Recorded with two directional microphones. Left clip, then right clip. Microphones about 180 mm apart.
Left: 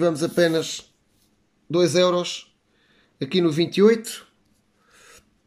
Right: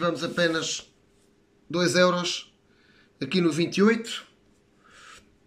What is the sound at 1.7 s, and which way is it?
Speech, 20° left (ahead or behind).